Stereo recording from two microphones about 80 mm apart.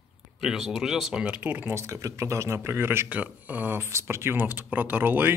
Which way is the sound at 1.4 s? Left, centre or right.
Right.